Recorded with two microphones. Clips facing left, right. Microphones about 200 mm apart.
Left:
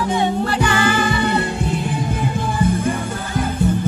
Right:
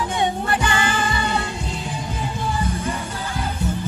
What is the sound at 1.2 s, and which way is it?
Music, 60° left (ahead or behind).